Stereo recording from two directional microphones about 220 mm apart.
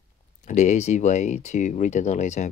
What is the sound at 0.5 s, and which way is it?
Speech, 35° left (ahead or behind).